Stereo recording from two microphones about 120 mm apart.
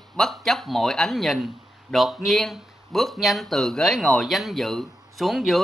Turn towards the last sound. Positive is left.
turn(degrees=0)  # may be behind; listen again after turning